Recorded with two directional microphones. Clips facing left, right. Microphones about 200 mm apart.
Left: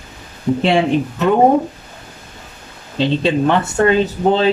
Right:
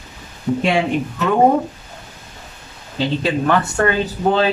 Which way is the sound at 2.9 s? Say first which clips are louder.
Left 4 dB; 25° left (ahead or behind).